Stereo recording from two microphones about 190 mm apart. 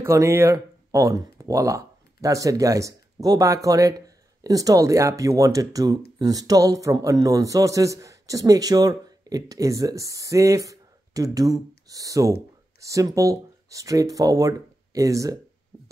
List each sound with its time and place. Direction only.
0.0 s speech: 15° right (ahead or behind)